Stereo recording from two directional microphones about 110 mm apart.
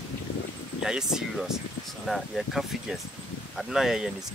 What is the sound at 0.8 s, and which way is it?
Speech, 5° right (ahead or behind).